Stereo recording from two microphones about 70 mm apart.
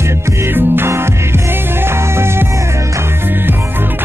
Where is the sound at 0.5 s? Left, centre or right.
Right.